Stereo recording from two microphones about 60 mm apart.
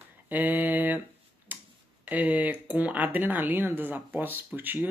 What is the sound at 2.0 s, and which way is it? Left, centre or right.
Speech, right.